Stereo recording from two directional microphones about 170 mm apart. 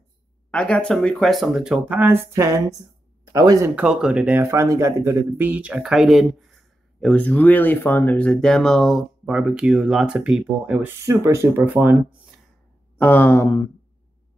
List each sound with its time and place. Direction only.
0.5 s speech: 5° left (ahead or behind); by 3.7 s 20° right (ahead or behind)
3.7 s speech: 5° right (ahead or behind)
10.9 s speech: 15° right (ahead or behind)
12.9 s a sound: 10° left (ahead or behind)